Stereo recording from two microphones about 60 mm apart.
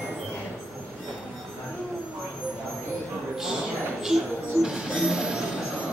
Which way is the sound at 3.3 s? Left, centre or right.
Centre.